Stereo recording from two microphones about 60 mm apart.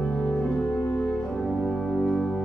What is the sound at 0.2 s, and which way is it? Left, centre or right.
Music, centre.